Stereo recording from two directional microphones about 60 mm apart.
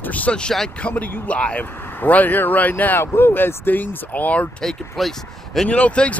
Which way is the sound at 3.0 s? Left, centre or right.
Left.